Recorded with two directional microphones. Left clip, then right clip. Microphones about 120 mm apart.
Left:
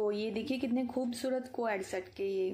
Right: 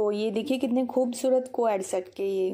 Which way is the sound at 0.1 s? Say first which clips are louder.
Right 8 dB; 20° right (ahead or behind).